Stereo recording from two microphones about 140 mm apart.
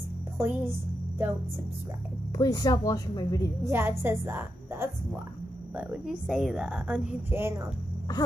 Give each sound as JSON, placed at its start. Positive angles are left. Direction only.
{"t": 0.4, "sound": "a woman's voice", "side_deg": -20}
{"t": 2.3, "sound": "a woman's voice", "side_deg": 25}
{"t": 3.6, "sound": "a woman's voice", "side_deg": -15}
{"t": 5.8, "sound": "a woman's voice", "side_deg": -5}